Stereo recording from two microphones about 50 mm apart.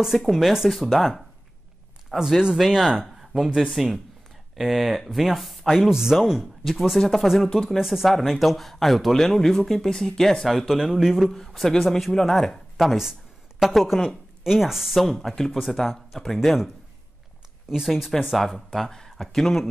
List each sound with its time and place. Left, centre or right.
0.0 s speech: centre
2.1 s speech: centre
7.3 s speech: centre
7.7 s speech: centre
8.4 s speech: centre
10.7 s a woman's voice: centre
15.0 s speech: centre
16.3 s speech: centre
17.8 s speech: centre
18.7 s speech: centre